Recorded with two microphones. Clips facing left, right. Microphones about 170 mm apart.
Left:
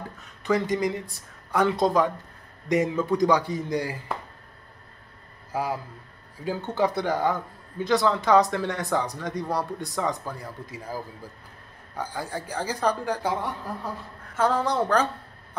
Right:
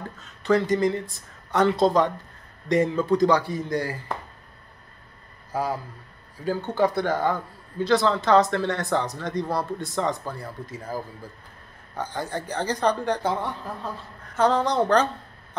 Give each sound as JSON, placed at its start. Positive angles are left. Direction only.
{"t": 0.2, "sound": "speech", "side_deg": 15}
{"t": 5.5, "sound": "speech", "side_deg": 10}
{"t": 6.8, "sound": "speech", "side_deg": 15}
{"t": 12.0, "sound": "speech", "side_deg": 5}